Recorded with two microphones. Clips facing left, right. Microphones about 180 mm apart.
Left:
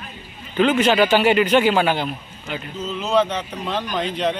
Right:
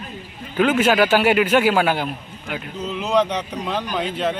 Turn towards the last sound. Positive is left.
turn(degrees=-5)  # may be behind; listen again after turning